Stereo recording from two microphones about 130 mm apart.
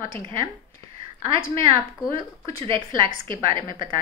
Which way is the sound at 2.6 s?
40° right (ahead or behind).